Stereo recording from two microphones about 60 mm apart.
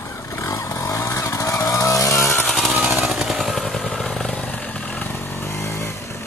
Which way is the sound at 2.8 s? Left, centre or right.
Centre.